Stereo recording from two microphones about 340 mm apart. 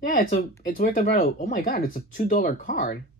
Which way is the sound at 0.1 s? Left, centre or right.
Left.